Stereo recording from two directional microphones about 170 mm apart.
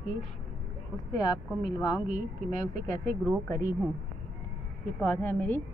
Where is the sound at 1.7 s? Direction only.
25° left (ahead or behind).